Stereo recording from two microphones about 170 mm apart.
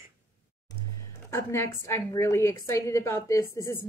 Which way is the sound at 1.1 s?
15° left (ahead or behind).